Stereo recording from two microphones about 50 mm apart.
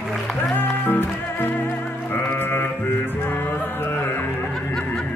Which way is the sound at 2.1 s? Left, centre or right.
Left.